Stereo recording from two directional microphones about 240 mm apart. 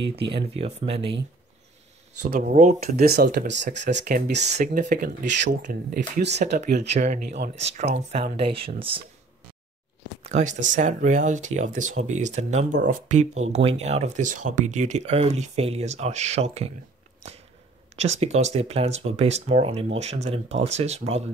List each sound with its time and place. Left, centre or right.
0.3 s speech: right
2.2 s speech: right
4.6 s speech: right
10.2 s speech: right
18.2 s speech: right